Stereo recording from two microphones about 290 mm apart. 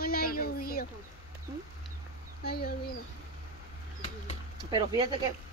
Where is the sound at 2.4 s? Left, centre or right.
Left.